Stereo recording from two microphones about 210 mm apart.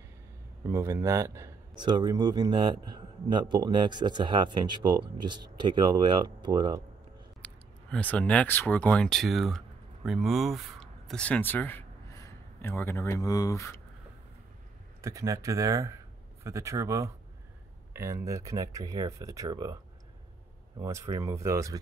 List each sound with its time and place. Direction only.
0.7 s speech: 10° right (ahead or behind)
7.4 s speech: 5° left (ahead or behind)
15.0 s speech: 15° right (ahead or behind)
20.8 s speech: 15° right (ahead or behind)